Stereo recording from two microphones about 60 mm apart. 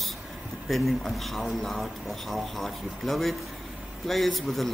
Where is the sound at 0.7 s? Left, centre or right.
Centre.